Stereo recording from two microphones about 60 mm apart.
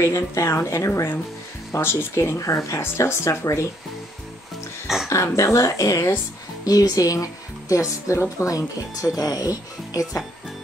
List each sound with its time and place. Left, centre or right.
0.0 s a woman's voice: left
1.7 s speech: left
2.8 s a woman's voice: left
5.1 s a woman's voice: left
6.6 s speech: left
8.5 s speech: left